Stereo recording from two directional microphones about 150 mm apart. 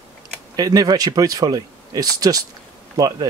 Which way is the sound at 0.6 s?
25° right (ahead or behind).